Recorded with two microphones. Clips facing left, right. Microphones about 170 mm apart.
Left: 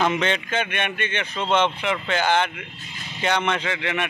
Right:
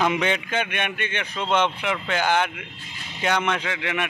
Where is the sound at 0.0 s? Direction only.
10° right (ahead or behind).